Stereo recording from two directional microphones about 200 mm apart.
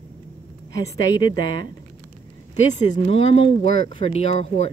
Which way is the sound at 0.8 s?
20° left (ahead or behind).